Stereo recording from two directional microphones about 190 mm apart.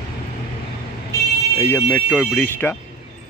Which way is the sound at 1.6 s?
10° left (ahead or behind).